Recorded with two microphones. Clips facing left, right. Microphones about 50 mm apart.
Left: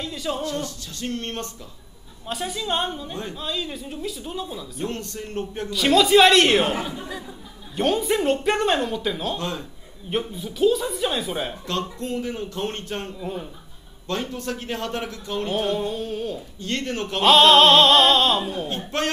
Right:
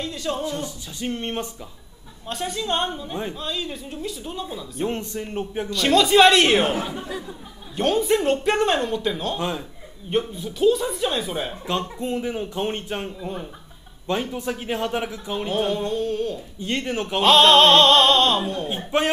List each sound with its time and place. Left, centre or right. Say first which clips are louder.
0.0 s speech: right 1 dB; centre
0.4 s speech: even; centre
2.2 s speech: right 1 dB; centre
4.8 s speech: right 4 dB; centre
5.7 s speech: left 1 dB; centre
7.7 s speech: right 1 dB; centre
9.4 s speech: right 3 dB; centre
10.0 s speech: right 3 dB; centre
12.0 s speech: right 2 dB; centre
13.2 s speech: even; centre
14.3 s speech: right 2 dB; centre
16.5 s speech: right 2 dB; centre
18.7 s speech: right 3 dB; centre